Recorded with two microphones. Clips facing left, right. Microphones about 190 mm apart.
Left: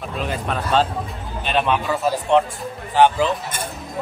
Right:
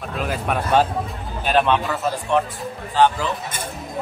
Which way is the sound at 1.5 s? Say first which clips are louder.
Right 2 dB; centre (ahead or behind).